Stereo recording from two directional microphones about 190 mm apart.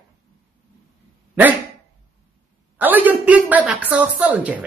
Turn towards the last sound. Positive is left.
turn(degrees=-5)  # may be behind; listen again after turning